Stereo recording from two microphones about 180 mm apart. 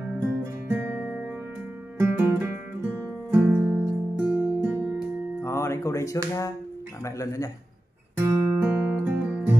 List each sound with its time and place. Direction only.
0.2 s music: 10° right (ahead or behind)
2.0 s music: 10° right (ahead or behind)
4.9 s music: 15° left (ahead or behind)
7.1 s a man's voice: 15° left (ahead or behind)
8.2 s guitar: 10° right (ahead or behind)